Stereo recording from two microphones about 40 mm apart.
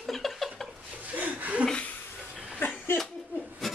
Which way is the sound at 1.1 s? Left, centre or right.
Right.